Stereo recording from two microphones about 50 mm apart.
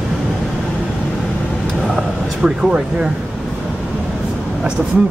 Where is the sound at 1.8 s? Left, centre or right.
Centre.